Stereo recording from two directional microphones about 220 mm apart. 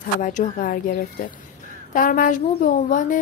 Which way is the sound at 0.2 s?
35° left (ahead or behind).